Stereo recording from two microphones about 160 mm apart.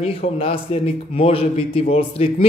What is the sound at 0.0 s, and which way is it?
A man's voice, 35° left (ahead or behind).